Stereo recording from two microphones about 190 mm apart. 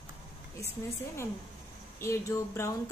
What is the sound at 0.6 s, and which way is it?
Speech, 15° left (ahead or behind).